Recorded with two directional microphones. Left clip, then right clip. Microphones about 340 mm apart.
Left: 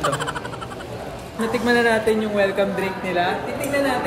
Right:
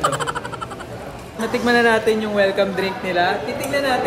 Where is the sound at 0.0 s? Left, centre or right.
Centre.